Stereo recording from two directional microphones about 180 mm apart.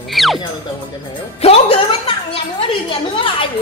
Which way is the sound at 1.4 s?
30° left (ahead or behind).